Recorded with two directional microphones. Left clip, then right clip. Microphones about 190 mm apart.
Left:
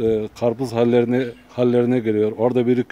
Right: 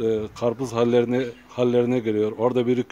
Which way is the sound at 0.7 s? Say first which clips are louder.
Left 2 dB; 30° left (ahead or behind).